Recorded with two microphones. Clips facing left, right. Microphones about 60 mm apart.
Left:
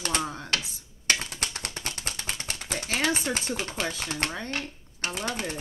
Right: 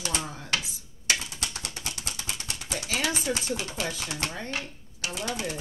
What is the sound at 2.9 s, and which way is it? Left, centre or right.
Speech, left.